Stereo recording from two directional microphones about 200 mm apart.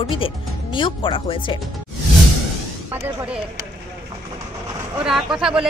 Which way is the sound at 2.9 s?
10° right (ahead or behind).